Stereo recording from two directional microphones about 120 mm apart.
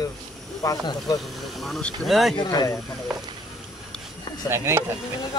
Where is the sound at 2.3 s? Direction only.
35° left (ahead or behind).